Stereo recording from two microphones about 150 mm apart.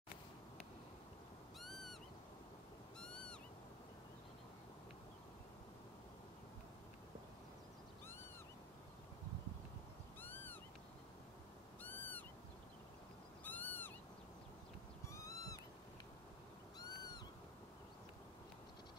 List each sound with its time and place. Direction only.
1.6 s cat: centre (ahead or behind)
3.0 s owl: 5° left (ahead or behind)
10.2 s cat: 15° left (ahead or behind)
11.8 s cat: 10° left (ahead or behind)
13.4 s cat: 10° left (ahead or behind)
15.1 s cat: 20° left (ahead or behind)
16.7 s cat: 25° left (ahead or behind)